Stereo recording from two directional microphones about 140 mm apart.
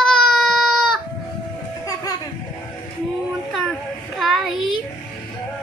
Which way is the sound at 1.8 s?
25° left (ahead or behind).